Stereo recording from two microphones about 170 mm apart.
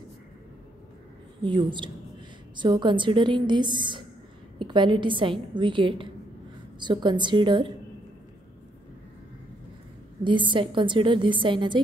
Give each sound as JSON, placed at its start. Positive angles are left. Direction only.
{"t": 1.4, "sound": "a woman's voice", "side_deg": -25}
{"t": 10.2, "sound": "a woman's voice", "side_deg": -30}